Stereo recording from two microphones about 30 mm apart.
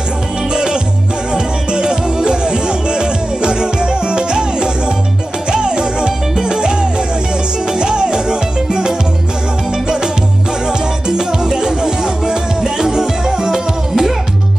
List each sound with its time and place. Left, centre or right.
0.5 s music: right